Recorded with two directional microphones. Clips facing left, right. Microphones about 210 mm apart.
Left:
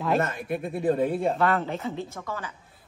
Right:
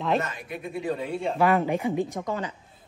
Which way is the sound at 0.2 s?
55° left (ahead or behind).